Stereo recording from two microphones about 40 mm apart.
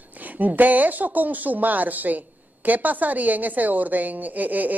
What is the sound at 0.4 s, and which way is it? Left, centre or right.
A woman's voice, right.